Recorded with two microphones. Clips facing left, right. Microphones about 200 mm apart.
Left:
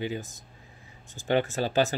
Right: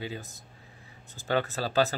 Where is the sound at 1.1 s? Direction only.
15° left (ahead or behind).